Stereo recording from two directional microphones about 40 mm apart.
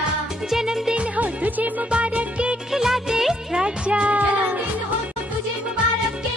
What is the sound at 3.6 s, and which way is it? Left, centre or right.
Music, right.